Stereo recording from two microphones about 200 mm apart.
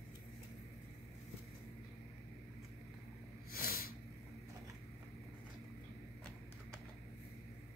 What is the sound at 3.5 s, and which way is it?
Snort, 50° left (ahead or behind).